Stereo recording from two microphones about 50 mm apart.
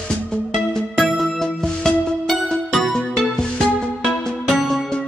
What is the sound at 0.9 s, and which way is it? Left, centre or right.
Music, centre.